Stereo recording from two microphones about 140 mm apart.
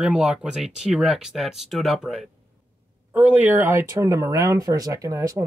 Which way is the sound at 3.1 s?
10° right (ahead or behind).